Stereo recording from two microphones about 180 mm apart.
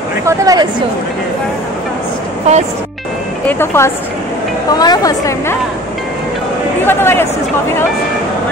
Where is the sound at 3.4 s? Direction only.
15° left (ahead or behind).